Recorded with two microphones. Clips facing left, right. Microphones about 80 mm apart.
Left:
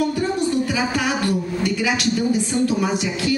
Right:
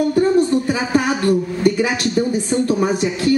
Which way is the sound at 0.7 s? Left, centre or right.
Right.